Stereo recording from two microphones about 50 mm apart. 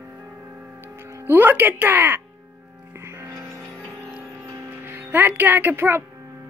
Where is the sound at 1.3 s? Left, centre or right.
Right.